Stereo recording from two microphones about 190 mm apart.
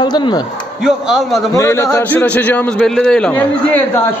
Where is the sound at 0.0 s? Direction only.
25° left (ahead or behind).